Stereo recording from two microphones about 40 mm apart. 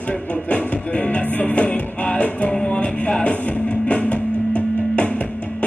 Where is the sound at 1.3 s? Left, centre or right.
Left.